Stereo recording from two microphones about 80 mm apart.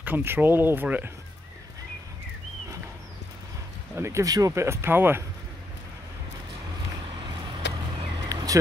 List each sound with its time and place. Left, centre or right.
0.0 s speech: right
3.9 s speech: right
8.3 s vehicle: right